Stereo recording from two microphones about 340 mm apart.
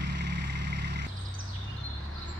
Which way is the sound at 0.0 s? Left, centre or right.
Right.